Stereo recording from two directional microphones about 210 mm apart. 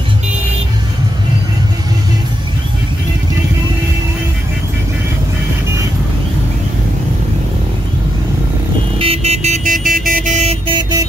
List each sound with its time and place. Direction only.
9.0 s vehicle: 30° right (ahead or behind)